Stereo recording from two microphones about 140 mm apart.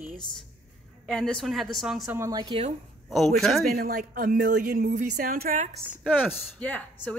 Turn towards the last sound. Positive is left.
turn(degrees=10)  # may be behind; listen again after turning